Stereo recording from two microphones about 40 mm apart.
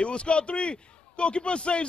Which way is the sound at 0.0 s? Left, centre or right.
Left.